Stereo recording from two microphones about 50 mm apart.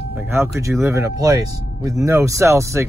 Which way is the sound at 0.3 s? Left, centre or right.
Right.